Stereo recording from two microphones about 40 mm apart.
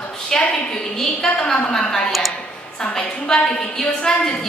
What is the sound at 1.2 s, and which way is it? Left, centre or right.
Speech, left.